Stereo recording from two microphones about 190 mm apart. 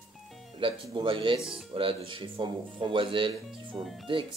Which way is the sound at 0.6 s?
25° right (ahead or behind).